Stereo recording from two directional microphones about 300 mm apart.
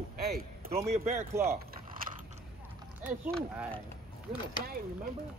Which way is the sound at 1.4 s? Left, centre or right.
Right.